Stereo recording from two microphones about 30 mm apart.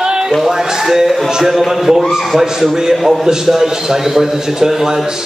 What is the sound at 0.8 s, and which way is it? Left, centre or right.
A man's voice, centre.